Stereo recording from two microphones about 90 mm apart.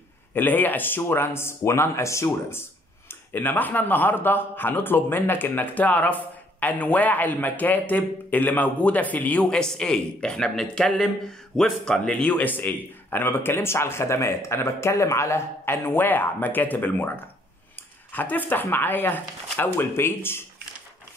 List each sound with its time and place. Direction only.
0.3 s speech: 20° left (ahead or behind)
18.1 s speech: 20° left (ahead or behind)